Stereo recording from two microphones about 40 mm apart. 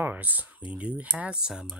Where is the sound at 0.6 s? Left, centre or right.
Right.